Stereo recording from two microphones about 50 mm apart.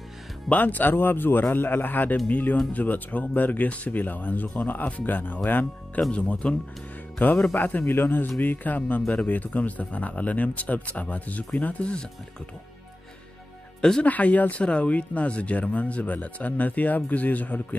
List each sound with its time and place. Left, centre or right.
0.5 s speech: left
6.1 s speech: left
7.2 s speech: left
9.0 s speech: left
9.3 s speech: left
13.7 s speech: centre
14.0 s speech: left